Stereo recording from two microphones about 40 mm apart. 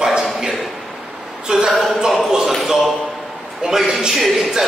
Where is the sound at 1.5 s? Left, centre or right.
Right.